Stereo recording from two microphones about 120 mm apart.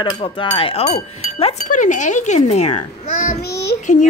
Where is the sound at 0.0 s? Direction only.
45° left (ahead or behind).